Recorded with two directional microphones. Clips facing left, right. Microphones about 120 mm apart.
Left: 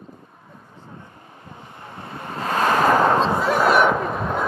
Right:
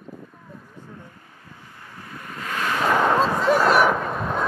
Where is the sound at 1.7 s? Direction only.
25° left (ahead or behind); by 2.9 s 40° left (ahead or behind).